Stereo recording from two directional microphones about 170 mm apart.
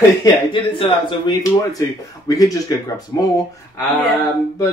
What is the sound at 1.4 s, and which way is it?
Speech, 20° left (ahead or behind).